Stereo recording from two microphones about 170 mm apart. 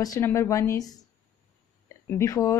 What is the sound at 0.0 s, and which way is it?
A woman's voice, 20° left (ahead or behind).